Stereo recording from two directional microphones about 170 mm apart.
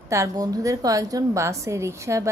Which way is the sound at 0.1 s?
20° right (ahead or behind).